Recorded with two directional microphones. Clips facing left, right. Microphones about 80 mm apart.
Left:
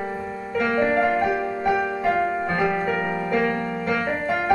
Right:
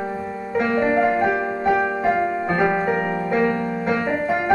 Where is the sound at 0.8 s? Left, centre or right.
Centre.